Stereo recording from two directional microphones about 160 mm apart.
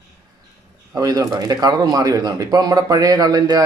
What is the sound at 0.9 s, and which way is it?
Speech, 20° right (ahead or behind).